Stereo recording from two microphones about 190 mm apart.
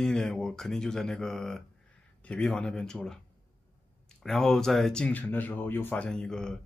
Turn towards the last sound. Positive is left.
turn(degrees=5)  # may be behind; listen again after turning